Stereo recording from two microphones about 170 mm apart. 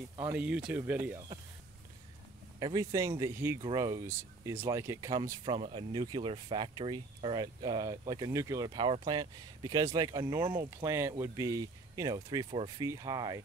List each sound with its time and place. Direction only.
0.2 s speech: 10° right (ahead or behind)
2.6 s speech: 20° right (ahead or behind)
5.4 s speech: 35° right (ahead or behind)
12.5 s speech: 35° right (ahead or behind)
12.8 s speech: 20° right (ahead or behind)